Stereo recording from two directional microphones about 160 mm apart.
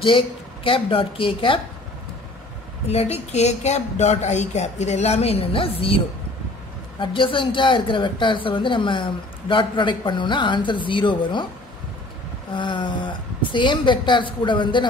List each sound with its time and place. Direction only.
0.7 s speech: 35° left (ahead or behind)
2.9 s speech: 40° left (ahead or behind)
7.0 s speech: 30° left (ahead or behind)
12.5 s speech: 30° left (ahead or behind)